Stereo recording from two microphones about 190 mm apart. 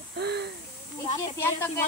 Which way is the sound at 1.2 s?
10° left (ahead or behind).